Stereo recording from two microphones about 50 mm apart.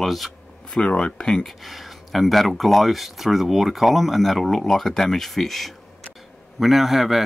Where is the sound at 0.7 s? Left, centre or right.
Centre.